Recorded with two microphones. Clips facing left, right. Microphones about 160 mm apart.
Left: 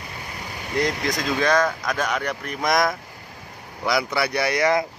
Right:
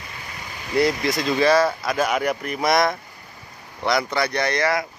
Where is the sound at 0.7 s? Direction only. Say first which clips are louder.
Right 4 dB; 5° right (ahead or behind); by 4.7 s 10° left (ahead or behind).